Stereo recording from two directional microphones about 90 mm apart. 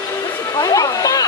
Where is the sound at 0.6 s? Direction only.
40° left (ahead or behind).